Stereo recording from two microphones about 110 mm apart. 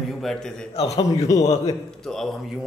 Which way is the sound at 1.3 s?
30° left (ahead or behind).